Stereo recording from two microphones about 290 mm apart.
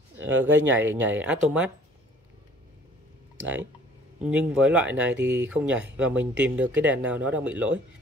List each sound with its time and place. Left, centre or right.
0.7 s speech: centre
3.3 s speech: centre
5.1 s speech: right
5.5 s speech: centre